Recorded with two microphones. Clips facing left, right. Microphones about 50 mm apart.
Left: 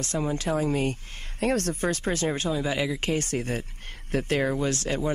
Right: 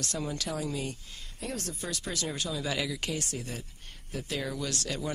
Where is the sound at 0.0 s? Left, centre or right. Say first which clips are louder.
Left 7 dB; left.